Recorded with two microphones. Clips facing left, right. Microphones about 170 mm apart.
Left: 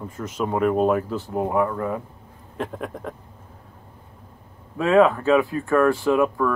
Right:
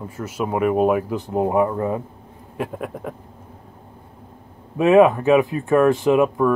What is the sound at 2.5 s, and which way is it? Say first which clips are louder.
Speech: right 2 dB; 10° right (ahead or behind).